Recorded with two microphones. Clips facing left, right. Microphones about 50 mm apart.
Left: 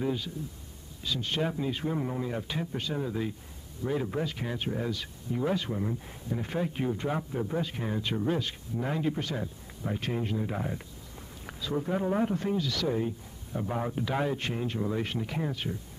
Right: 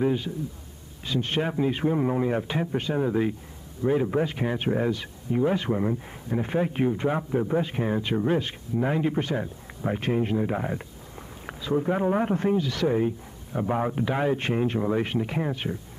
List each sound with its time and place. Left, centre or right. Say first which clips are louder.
0.0 s a man's voice: right 6 dB; right
4.6 s speech: right 8 dB; right
4.9 s a man's voice: right 7 dB; right